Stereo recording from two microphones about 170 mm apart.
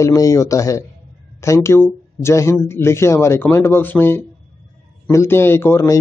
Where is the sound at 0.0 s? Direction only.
20° left (ahead or behind).